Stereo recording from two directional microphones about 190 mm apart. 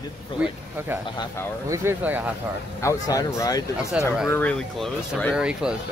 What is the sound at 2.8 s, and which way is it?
Speech, 15° left (ahead or behind).